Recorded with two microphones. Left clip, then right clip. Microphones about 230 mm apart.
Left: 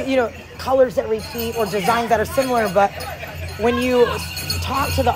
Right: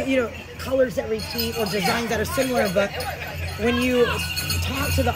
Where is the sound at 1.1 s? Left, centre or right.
Centre.